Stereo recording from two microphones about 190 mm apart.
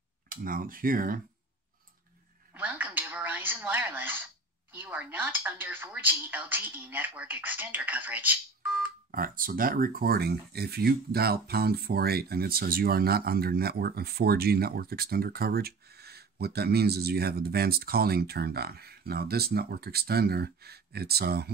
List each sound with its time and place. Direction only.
0.3 s speech: 50° right (ahead or behind)
2.5 s a sound: 10° right (ahead or behind)
4.7 s speech: 10° right (ahead or behind)
9.1 s speech: 50° right (ahead or behind)